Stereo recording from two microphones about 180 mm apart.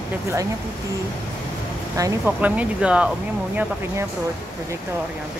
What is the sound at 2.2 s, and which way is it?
Speech, 10° right (ahead or behind).